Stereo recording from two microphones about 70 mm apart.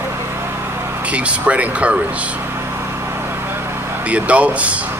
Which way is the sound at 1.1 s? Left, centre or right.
Centre.